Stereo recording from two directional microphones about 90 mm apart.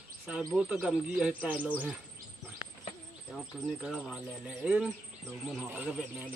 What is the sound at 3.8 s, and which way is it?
Speech, centre (ahead or behind).